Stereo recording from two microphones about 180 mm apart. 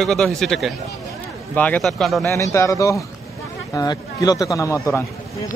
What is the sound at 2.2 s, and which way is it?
A man's voice, 15° left (ahead or behind).